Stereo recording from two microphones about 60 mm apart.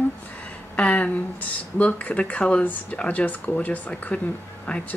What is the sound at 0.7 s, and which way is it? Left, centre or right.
Speech, left.